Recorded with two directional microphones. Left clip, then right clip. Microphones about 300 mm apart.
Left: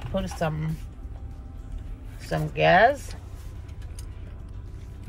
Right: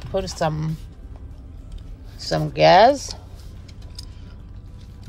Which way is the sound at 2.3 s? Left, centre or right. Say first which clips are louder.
Right 6 dB; centre.